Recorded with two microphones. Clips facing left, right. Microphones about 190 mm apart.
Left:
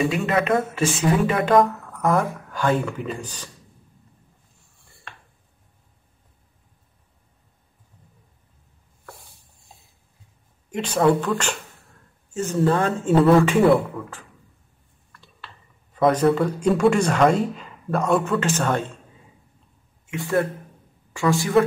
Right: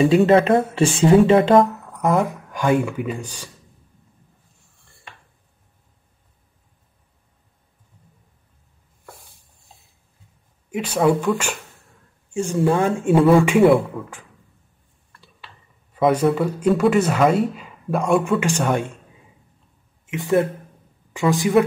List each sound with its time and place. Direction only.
0.1 s speech: 30° right (ahead or behind); by 3.4 s 10° right (ahead or behind)
10.7 s speech: 10° right (ahead or behind)
12.7 s speech: 25° right (ahead or behind)
13.1 s speech: centre (ahead or behind)
15.1 s speech: 10° right (ahead or behind)
20.1 s speech: 20° right (ahead or behind)